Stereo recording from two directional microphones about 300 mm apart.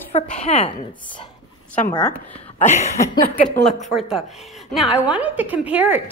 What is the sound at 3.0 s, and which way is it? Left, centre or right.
Speech, centre.